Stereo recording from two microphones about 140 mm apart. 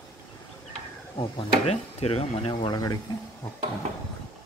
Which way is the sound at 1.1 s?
40° left (ahead or behind).